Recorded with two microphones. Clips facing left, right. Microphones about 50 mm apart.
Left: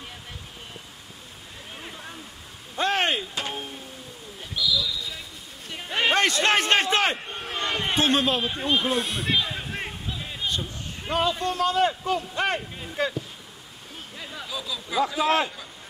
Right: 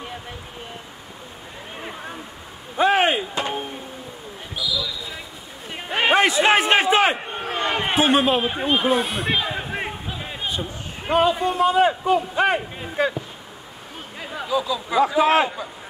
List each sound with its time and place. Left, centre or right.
1.8 s a sound: right
2.8 s music: centre
4.6 s basketball bounce: centre
5.7 s a sound: right
8.5 s speech: right
8.8 s speech: centre
9.3 s speech: centre
14.2 s speech: right